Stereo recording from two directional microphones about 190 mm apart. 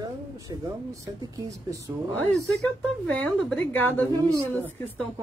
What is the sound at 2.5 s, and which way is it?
A woman's voice, 5° left (ahead or behind).